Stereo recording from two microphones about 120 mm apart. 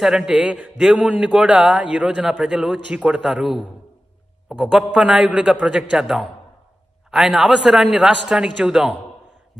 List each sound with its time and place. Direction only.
0.0 s a man's voice: 5° right (ahead or behind)